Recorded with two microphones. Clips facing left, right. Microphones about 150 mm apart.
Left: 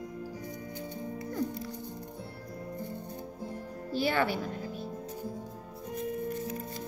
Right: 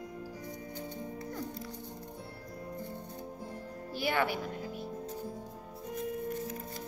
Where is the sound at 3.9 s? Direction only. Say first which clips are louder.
Left 3 dB; 15° right (ahead or behind).